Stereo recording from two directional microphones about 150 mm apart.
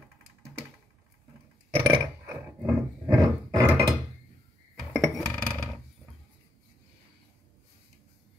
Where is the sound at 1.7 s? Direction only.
35° right (ahead or behind).